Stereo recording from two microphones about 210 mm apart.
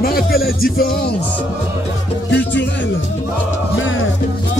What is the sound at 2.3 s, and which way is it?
Music, 55° left (ahead or behind).